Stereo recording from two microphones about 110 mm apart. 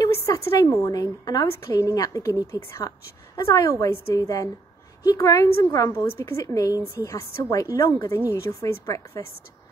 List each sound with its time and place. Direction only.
0.0 s a woman's voice: 30° left (ahead or behind)